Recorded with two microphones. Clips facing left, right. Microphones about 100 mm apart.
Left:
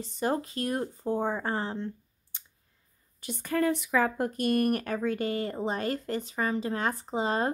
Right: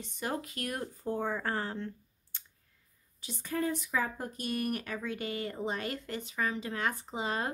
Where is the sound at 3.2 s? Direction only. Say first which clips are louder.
Left 6 dB; 65° left (ahead or behind); by 7.5 s 35° left (ahead or behind).